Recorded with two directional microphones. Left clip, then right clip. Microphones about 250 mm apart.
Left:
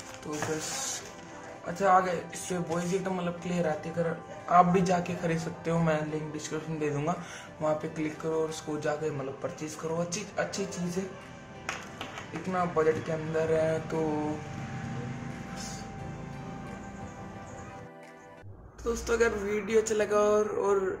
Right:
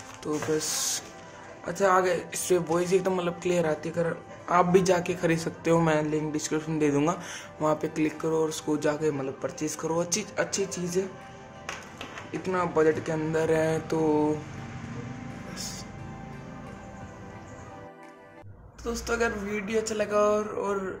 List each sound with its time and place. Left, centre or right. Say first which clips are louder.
0.2 s speech: right 5 dB; right
12.4 s speech: right 3 dB; right
18.9 s speech: left 1 dB; centre